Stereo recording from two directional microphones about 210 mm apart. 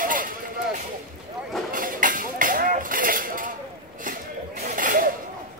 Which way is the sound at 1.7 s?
40° right (ahead or behind).